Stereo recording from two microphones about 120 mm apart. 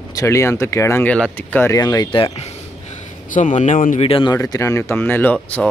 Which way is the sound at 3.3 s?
90° left.